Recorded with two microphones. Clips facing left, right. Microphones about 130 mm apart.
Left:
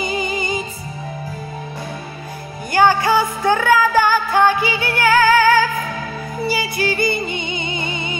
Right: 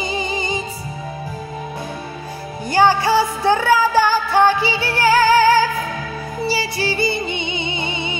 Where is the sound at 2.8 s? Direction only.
50° left (ahead or behind).